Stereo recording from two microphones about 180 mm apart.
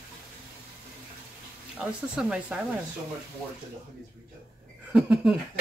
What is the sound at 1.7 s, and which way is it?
Speech, 5° right (ahead or behind).